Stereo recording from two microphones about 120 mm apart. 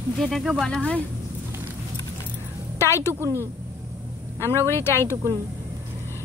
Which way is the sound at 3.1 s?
20° right (ahead or behind).